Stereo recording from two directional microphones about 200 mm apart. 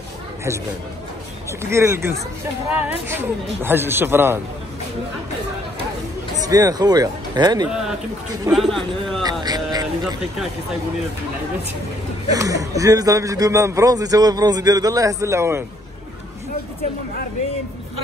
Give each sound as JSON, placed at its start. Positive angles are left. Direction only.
{"t": 1.6, "sound": "a man's voice", "side_deg": -15}
{"t": 6.3, "sound": "speech", "side_deg": -15}
{"t": 8.5, "sound": "a man's voice", "side_deg": 0}
{"t": 9.2, "sound": "speech", "side_deg": -20}
{"t": 12.3, "sound": "a man's voice", "side_deg": -15}